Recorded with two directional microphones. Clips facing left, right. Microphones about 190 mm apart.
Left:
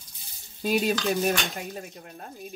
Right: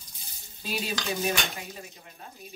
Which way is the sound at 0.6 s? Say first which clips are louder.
Left 8 dB; 50° left (ahead or behind).